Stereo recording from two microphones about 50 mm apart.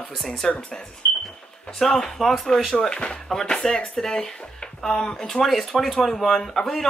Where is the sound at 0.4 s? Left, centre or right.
Centre.